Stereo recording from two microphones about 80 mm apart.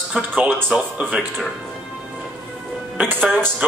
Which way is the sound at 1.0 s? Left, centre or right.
Centre.